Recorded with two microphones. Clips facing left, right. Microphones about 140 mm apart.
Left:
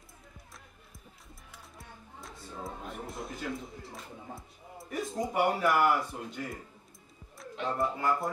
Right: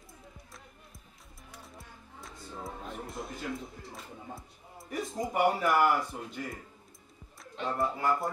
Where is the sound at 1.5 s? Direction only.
Centre (ahead or behind).